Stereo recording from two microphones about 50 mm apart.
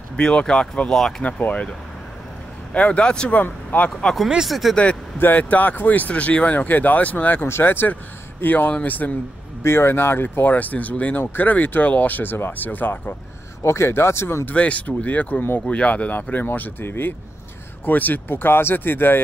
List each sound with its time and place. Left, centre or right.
0.2 s speech: left
1.2 s speech: left
3.4 s speech: left
4.5 s speech: centre
5.2 s speech: left
7.4 s speech: left
9.6 s speech: left
13.6 s speech: left
14.5 s speech: left
16.1 s speech: left
16.8 s speech: left
17.8 s speech: left